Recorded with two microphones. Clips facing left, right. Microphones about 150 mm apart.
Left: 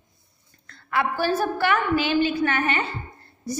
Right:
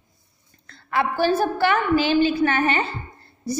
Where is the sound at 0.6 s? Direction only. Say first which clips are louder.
Right 1 dB; 30° right (ahead or behind).